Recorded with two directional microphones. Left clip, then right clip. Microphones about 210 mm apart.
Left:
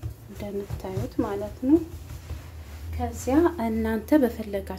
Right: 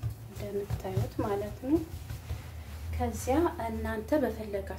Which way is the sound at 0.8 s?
30° left (ahead or behind).